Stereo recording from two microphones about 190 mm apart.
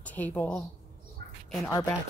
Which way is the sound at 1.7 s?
20° left (ahead or behind).